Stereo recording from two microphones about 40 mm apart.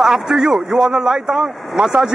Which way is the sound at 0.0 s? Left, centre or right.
Centre.